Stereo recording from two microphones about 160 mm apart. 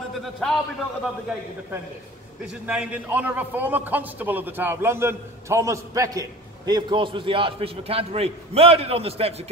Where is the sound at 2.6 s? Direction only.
10° right (ahead or behind).